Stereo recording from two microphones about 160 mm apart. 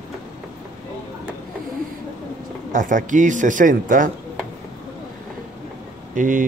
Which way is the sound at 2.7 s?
55° right (ahead or behind).